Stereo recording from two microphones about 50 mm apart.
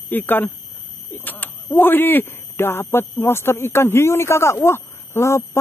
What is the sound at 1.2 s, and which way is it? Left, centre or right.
Speech, left.